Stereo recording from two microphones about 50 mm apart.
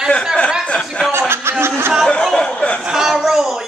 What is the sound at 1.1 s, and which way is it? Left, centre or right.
Chuckle, right.